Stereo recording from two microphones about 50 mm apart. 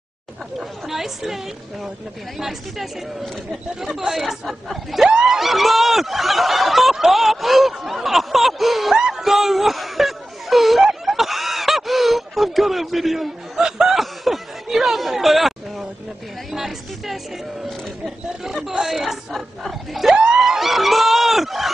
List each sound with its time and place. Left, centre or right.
0.6 s speech: centre
8.9 s a sound: centre
9.2 s a sound: centre
13.7 s snicker: centre
13.9 s chatter: centre
16.5 s speech: centre
18.4 s speech: centre